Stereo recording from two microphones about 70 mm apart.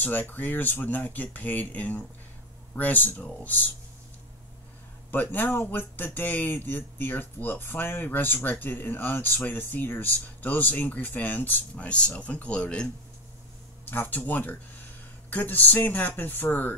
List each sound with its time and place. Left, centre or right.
0.0 s speech: left
5.1 s speech: left
13.8 s speech: left